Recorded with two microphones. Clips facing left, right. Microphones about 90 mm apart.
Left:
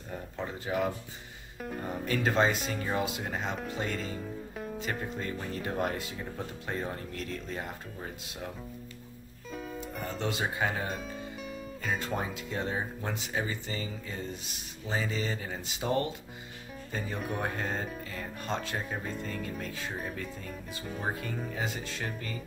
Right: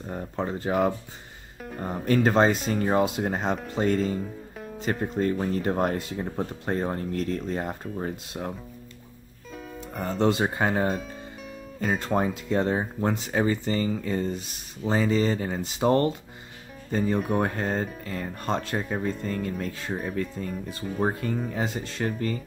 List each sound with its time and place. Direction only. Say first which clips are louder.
0.1 s speech: right 7 dB; 40° right (ahead or behind)
9.5 s music: even; centre (ahead or behind)
9.9 s speech: right 11 dB; 40° right (ahead or behind)
11.0 s music: right 1 dB; centre (ahead or behind)
11.8 s speech: right 8 dB; 40° right (ahead or behind)
17.3 s speech: right 7 dB; 45° right (ahead or behind)